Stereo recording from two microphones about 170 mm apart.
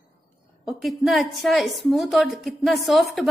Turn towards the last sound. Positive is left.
turn(degrees=0)  # may be behind; listen again after turning